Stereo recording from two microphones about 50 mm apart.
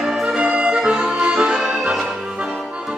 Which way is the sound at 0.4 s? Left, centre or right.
Right.